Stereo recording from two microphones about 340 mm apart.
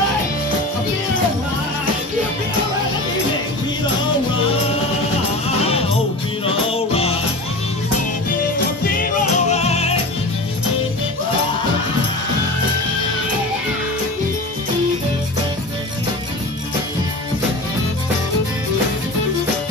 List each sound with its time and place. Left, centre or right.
6.4 s music: centre
8.8 s music: left